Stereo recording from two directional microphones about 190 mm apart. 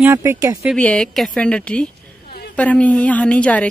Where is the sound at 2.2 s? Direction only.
55° left (ahead or behind).